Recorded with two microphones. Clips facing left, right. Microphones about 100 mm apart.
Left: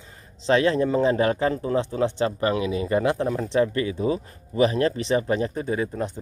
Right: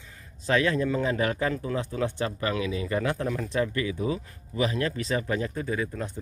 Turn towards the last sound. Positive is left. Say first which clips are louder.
# left 4 dB
turn(degrees=30)  # may be behind; listen again after turning